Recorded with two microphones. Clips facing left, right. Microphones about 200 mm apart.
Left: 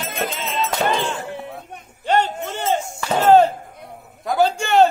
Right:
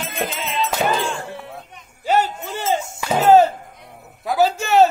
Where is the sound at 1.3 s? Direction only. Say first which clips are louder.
Left 3 dB; 20° left (ahead or behind).